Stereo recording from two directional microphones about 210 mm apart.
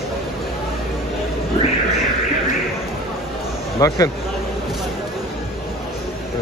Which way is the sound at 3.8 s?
15° left (ahead or behind).